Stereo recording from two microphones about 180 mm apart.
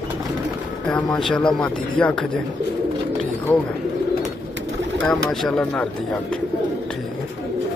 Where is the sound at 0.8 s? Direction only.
5° left (ahead or behind).